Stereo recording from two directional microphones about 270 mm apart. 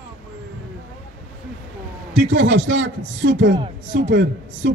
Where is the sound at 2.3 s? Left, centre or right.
Right.